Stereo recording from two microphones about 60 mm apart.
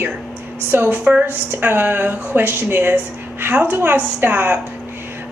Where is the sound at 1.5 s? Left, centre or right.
Right.